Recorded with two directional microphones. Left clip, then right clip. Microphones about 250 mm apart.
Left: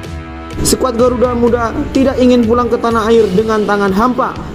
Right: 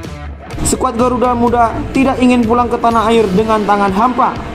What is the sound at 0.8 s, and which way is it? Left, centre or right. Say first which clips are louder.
Speech: even; centre.